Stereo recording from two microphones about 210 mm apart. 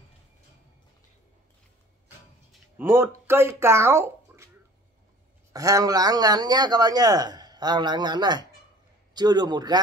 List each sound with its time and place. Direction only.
2.8 s speech: 10° right (ahead or behind)
5.5 s speech: 15° right (ahead or behind)